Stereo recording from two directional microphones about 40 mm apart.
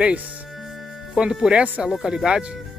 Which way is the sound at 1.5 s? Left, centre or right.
Right.